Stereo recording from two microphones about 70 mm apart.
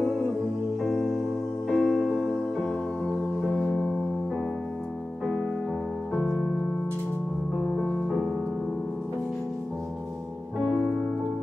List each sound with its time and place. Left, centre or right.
0.0 s music: centre
7.5 s music: centre
10.8 s piano: left